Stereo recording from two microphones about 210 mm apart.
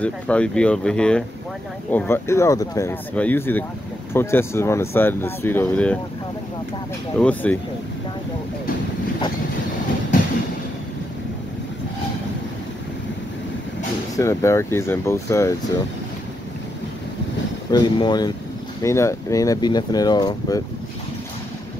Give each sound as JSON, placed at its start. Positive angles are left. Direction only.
{"t": 0.0, "sound": "speech", "side_deg": 5}
{"t": 7.2, "sound": "speech", "side_deg": 5}
{"t": 14.1, "sound": "speech", "side_deg": 15}
{"t": 17.6, "sound": "speech", "side_deg": 20}